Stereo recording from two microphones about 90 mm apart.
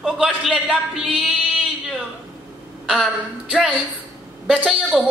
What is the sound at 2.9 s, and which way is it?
Speech, 10° left (ahead or behind).